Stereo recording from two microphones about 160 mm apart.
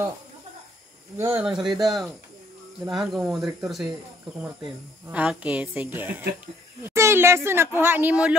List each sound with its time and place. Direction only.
1.1 s speech: 15° right (ahead or behind)
5.0 s a woman's voice: 10° right (ahead or behind)